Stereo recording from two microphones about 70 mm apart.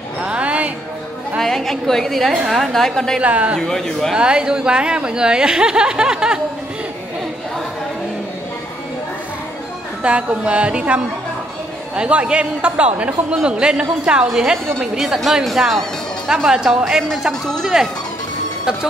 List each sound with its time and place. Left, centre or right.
0.2 s music: centre
1.4 s a woman's voice: centre
3.2 s speech: centre
3.6 s speech: centre
4.1 s a man's voice: centre
10.0 s a man's voice: centre
17.3 s a woman's voice: centre